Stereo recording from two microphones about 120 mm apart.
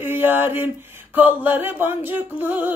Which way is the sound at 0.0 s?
15° right (ahead or behind).